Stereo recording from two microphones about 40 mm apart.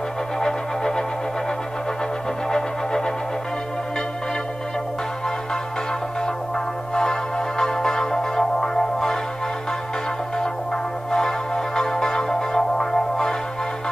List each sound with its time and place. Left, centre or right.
0.4 s music: centre
2.5 s music: centre
6.2 s music: centre
10.3 s music: centre